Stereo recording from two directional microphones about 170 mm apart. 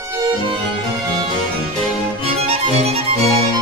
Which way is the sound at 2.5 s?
35° right (ahead or behind).